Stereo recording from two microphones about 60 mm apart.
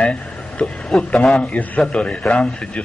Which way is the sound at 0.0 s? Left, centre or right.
Centre.